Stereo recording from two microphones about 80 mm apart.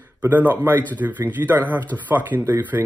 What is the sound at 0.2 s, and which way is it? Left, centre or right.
Speech, right.